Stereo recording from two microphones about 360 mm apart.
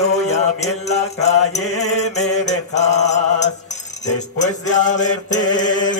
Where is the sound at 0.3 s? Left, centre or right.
Centre.